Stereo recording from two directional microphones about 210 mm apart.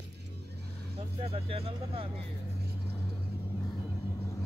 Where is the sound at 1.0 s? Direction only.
30° right (ahead or behind).